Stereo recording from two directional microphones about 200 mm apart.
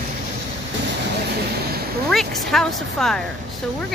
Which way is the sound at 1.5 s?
50° right (ahead or behind).